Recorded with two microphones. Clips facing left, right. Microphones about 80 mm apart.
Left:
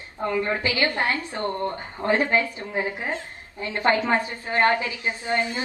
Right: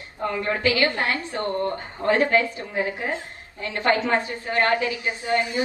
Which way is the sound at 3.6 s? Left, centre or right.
Left.